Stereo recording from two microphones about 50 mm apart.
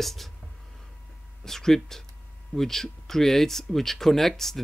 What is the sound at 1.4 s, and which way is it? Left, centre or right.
Speech, centre.